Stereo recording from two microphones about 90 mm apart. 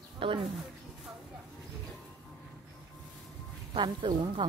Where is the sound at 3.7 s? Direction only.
65° right (ahead or behind).